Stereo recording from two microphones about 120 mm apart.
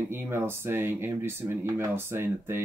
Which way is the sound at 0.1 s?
20° right (ahead or behind).